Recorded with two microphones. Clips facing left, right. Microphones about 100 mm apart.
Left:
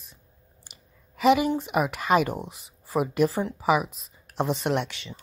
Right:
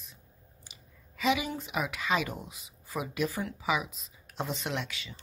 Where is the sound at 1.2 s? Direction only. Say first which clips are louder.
Left 9 dB; 50° left (ahead or behind).